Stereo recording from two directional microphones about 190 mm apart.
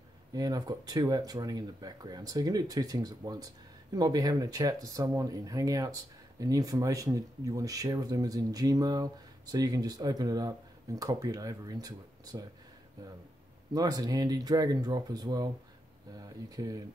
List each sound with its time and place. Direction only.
0.3 s speech: 20° right (ahead or behind)
13.7 s speech: 20° right (ahead or behind)